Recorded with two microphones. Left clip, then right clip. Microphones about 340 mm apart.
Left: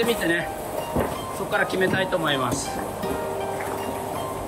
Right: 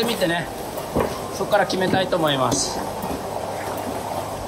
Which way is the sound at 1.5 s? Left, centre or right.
Centre.